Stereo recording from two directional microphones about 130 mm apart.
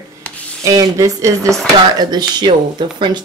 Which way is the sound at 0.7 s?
25° right (ahead or behind).